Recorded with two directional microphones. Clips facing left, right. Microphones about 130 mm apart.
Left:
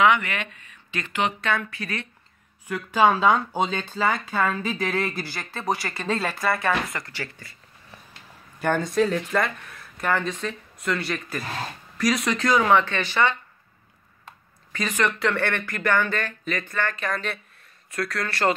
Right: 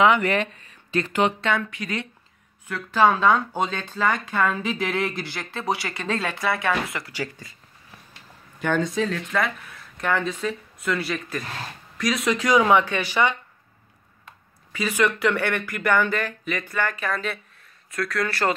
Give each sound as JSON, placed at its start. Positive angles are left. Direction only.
{"t": 0.0, "sound": "speech", "side_deg": -35}
{"t": 1.4, "sound": "speech", "side_deg": -25}
{"t": 2.7, "sound": "speech", "side_deg": 10}
{"t": 7.1, "sound": "speech", "side_deg": -15}
{"t": 8.8, "sound": "speech", "side_deg": 0}
{"t": 12.4, "sound": "speech", "side_deg": -15}
{"t": 14.7, "sound": "speech", "side_deg": -10}